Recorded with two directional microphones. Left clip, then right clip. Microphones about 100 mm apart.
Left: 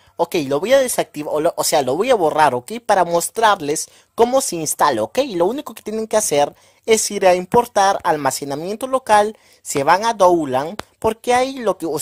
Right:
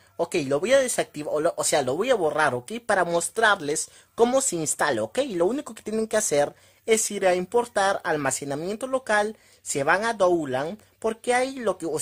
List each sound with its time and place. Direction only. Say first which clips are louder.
0.2 s a woman's voice: left 6 dB; 25° left (ahead or behind)